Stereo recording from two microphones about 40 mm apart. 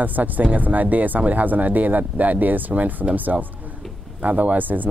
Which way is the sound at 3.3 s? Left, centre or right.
Right.